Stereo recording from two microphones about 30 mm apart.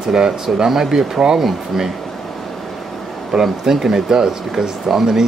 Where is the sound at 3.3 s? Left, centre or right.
Centre.